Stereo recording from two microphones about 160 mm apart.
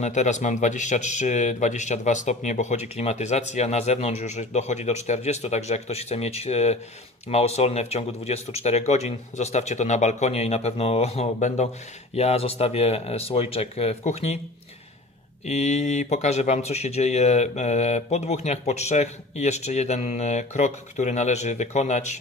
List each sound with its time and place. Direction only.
0.0 s speech: 45° left (ahead or behind)
15.4 s speech: 45° left (ahead or behind)